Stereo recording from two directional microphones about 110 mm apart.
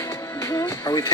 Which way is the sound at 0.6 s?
25° left (ahead or behind).